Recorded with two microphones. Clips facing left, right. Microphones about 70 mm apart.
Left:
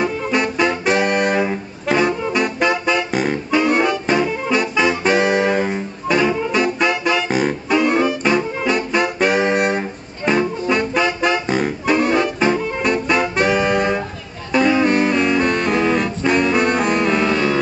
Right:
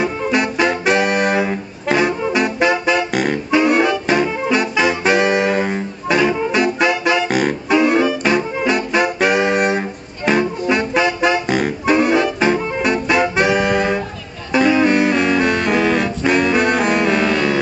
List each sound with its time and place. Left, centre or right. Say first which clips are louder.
0.0 s music: right 1 dB; centre
3.1 s music: right 1 dB; right
3.5 s music: right 2 dB; centre
5.1 s music: right 1 dB; right
5.4 s music: even; centre
7.2 s music: right 1 dB; right
7.7 s music: right 2 dB; centre
9.4 s brass instrument: right 1 dB; right
9.7 s music: right 1 dB; centre
13.4 s saxophone: right 1 dB; centre
14.5 s music: right 1 dB; centre